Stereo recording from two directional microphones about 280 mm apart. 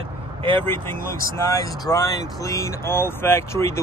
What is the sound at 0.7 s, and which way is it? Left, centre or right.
Speech, centre.